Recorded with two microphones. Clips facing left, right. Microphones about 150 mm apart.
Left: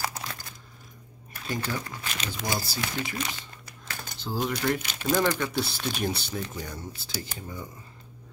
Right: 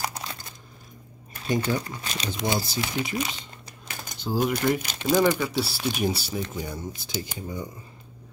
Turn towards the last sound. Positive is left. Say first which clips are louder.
# right 5 dB
turn(degrees=-15)  # may be behind; listen again after turning